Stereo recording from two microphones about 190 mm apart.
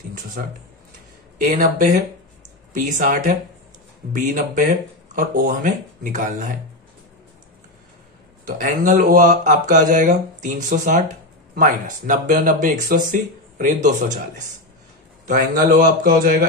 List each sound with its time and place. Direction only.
0.1 s a sound: 45° right (ahead or behind)
1.4 s speech: 45° right (ahead or behind)
8.5 s speech: 45° right (ahead or behind)
15.2 s speech: 50° right (ahead or behind)